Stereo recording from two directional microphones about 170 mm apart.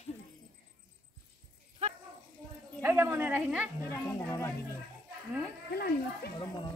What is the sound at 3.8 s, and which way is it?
Speech, 15° left (ahead or behind).